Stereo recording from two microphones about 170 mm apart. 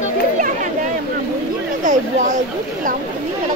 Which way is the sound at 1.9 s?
45° right (ahead or behind).